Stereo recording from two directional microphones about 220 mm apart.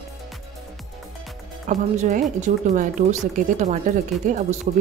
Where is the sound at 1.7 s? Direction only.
35° right (ahead or behind).